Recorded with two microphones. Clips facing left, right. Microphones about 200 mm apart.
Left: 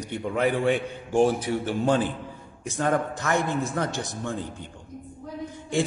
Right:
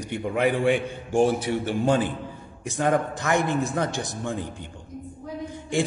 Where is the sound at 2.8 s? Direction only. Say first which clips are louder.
Right 2 dB; 15° right (ahead or behind).